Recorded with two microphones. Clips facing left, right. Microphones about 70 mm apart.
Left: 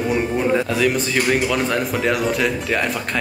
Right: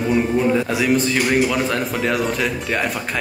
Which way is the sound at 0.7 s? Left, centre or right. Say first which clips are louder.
Right 1 dB; centre.